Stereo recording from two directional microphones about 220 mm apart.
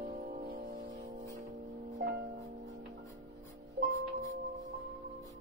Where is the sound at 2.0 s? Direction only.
50° right (ahead or behind).